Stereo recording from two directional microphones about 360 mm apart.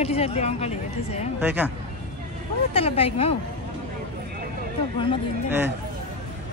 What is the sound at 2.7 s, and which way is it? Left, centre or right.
Speech, centre.